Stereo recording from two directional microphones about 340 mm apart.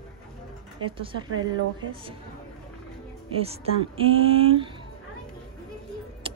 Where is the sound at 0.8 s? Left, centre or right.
Centre.